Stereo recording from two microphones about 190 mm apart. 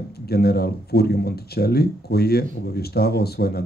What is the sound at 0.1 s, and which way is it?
Speech, 55° left (ahead or behind).